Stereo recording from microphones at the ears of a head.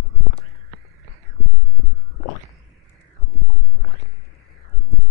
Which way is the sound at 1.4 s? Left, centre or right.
Left.